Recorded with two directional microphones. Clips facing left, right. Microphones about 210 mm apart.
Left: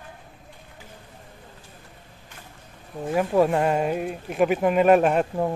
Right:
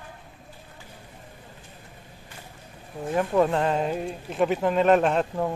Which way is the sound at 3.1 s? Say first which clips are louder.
Left 2 dB; 10° left (ahead or behind).